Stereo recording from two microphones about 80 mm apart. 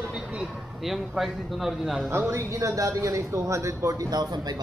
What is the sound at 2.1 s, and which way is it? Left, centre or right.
A man's voice, right.